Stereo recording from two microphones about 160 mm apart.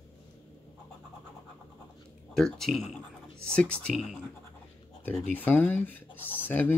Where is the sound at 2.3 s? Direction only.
5° left (ahead or behind).